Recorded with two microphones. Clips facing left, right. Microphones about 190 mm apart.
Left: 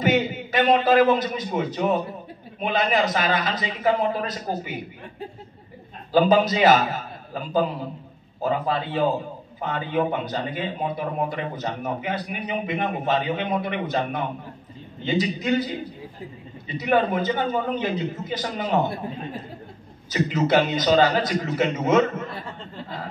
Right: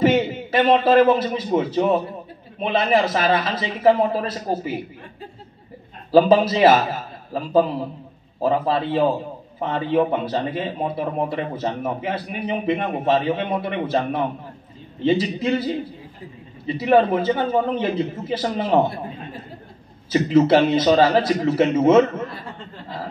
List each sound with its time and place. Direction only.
0.0 s a man's voice: 30° right (ahead or behind)
6.1 s a man's voice: 30° right (ahead or behind)
8.4 s a man's voice: 30° right (ahead or behind)
16.6 s a man's voice: 30° right (ahead or behind)
20.1 s a man's voice: 30° right (ahead or behind)